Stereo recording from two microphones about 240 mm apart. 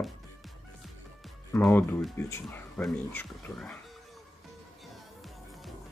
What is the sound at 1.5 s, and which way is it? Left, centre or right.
Speech, centre.